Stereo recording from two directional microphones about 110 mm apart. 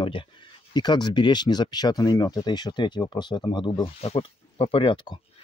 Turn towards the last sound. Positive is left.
turn(degrees=50)  # may be behind; listen again after turning